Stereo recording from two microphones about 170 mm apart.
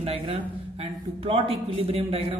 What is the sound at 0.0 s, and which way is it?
Speech, 35° right (ahead or behind).